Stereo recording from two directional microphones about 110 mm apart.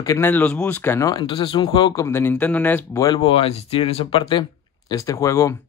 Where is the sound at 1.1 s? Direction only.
45° left (ahead or behind).